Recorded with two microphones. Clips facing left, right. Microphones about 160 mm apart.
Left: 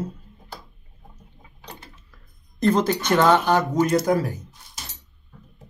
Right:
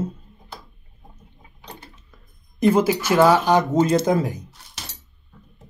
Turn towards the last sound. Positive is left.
turn(degrees=-20)  # may be behind; listen again after turning